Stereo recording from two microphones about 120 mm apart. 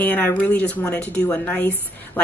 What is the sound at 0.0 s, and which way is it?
A woman's voice, 15° left (ahead or behind).